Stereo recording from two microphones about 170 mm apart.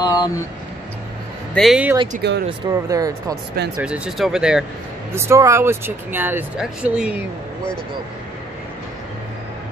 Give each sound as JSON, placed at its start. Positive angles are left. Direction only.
{"t": 0.0, "sound": "speech", "side_deg": 20}
{"t": 1.5, "sound": "speech", "side_deg": 0}
{"t": 2.2, "sound": "speech", "side_deg": -75}
{"t": 2.7, "sound": "speech", "side_deg": -20}
{"t": 3.7, "sound": "speech", "side_deg": -5}
{"t": 5.1, "sound": "speech", "side_deg": -15}